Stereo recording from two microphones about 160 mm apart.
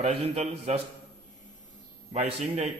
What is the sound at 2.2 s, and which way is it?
Speech, 45° right (ahead or behind).